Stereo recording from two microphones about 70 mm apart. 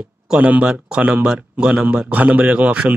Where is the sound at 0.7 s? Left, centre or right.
Centre.